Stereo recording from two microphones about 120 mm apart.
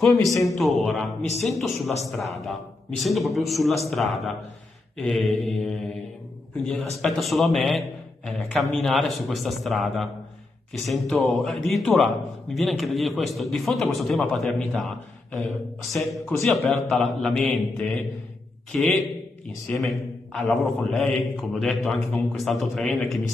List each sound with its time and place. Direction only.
0.0 s a man's voice: centre (ahead or behind)
6.9 s a man's voice: centre (ahead or behind)
18.7 s a man's voice: 10° left (ahead or behind)
19.7 s a man's voice: 25° left (ahead or behind)
20.3 s a man's voice: centre (ahead or behind)